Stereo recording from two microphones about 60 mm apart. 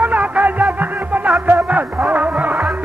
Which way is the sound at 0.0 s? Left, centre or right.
Right.